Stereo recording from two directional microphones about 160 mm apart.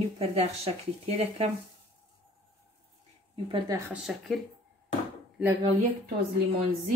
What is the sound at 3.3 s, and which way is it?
Speech, 30° right (ahead or behind).